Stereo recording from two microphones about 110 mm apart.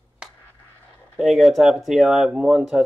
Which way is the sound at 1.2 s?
Centre (ahead or behind).